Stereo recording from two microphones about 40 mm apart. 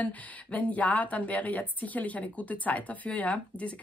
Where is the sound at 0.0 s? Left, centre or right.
Left.